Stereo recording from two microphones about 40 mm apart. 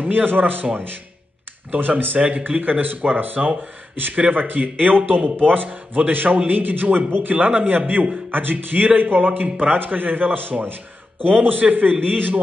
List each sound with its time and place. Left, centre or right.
0.0 s a man's voice: right
1.7 s a man's voice: right
2.1 s a man's voice: right